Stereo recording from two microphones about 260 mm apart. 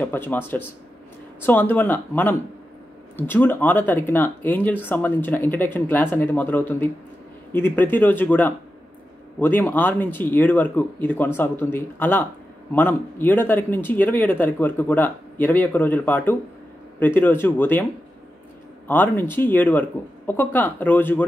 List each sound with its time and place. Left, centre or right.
0.0 s speech: centre
18.9 s speech: centre